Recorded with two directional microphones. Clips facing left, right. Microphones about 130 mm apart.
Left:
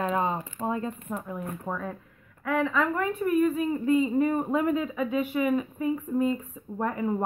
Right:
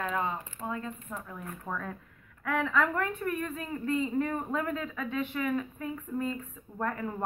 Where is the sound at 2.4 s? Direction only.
Centre (ahead or behind).